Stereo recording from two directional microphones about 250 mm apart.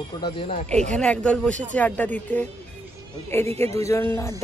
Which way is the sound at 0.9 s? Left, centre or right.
Centre.